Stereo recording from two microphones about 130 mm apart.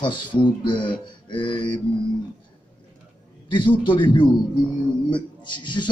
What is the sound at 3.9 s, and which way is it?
A man's voice, 35° left (ahead or behind).